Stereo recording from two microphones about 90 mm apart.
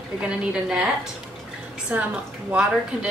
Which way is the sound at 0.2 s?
10° right (ahead or behind).